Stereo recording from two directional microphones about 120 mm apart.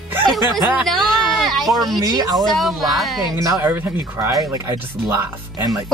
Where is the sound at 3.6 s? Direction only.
15° right (ahead or behind).